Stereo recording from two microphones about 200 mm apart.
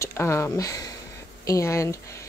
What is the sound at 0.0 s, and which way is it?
Speech, 15° left (ahead or behind).